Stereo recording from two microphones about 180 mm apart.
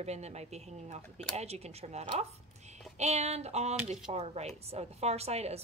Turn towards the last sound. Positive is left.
turn(degrees=-35)  # may be behind; listen again after turning